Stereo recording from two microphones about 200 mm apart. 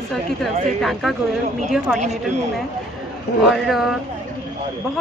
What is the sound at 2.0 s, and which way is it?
Speech, 35° right (ahead or behind).